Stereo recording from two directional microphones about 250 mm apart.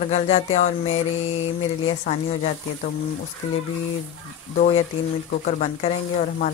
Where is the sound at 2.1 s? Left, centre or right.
Left.